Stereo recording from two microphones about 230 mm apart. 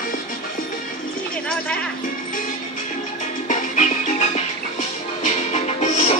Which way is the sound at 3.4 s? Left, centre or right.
Left.